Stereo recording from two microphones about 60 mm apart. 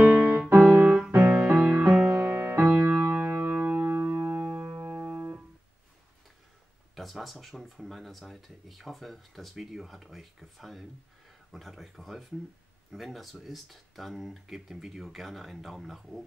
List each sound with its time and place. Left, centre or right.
0.0 s music: right
1.3 s music: centre
2.8 s music: right
4.0 s music: right
7.0 s speech: centre